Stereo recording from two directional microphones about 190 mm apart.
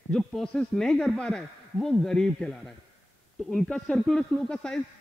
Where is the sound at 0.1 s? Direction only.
5° left (ahead or behind).